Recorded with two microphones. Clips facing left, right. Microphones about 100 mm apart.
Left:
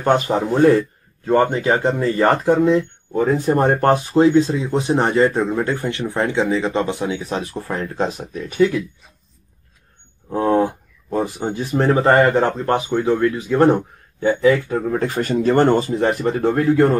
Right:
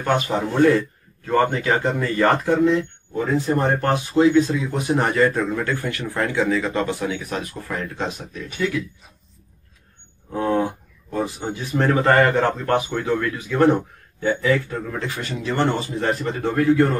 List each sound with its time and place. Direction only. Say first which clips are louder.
0.0 s speech: left 4 dB; 30° left (ahead or behind)
3.2 s speech: left 4 dB; 40° left (ahead or behind)
10.3 s speech: left 4 dB; 35° left (ahead or behind)
14.9 s speech: left 8 dB; 45° left (ahead or behind)
16.0 s speech: left 4 dB; 20° left (ahead or behind)
16.3 s a man's voice: even; 40° left (ahead or behind)